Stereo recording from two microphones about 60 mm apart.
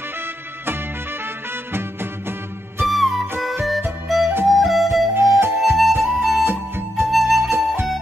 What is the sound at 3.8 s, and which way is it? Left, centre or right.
Music, right.